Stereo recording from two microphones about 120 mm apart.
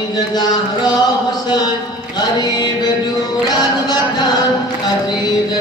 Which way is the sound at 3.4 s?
35° left (ahead or behind).